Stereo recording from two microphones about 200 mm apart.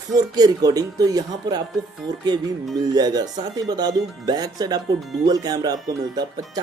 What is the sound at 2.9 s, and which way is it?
Speech, 20° right (ahead or behind).